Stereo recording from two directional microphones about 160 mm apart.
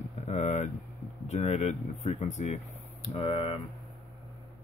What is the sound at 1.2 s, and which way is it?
Speech, 45° left (ahead or behind).